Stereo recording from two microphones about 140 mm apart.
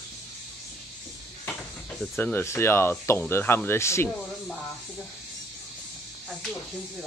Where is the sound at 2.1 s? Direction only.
15° left (ahead or behind).